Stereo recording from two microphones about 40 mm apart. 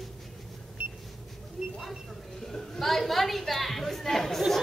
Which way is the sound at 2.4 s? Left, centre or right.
Centre.